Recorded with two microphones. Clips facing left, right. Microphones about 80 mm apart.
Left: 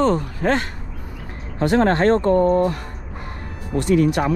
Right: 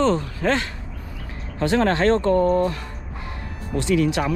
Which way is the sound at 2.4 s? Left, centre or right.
Left.